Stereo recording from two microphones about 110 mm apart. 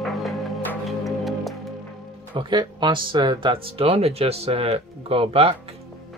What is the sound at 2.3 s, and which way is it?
Speech, 45° right (ahead or behind).